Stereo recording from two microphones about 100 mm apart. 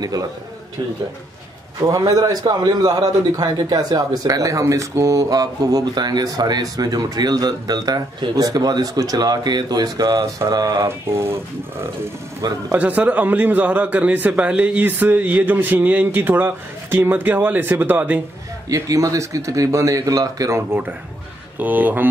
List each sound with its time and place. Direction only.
1.8 s a man's voice: 35° right (ahead or behind)
11.1 s speech: 25° right (ahead or behind)
12.4 s a man's voice: 35° right (ahead or behind)
12.7 s a man's voice: 15° right (ahead or behind)
18.7 s a man's voice: 35° right (ahead or behind)
21.5 s a man's voice: 15° right (ahead or behind)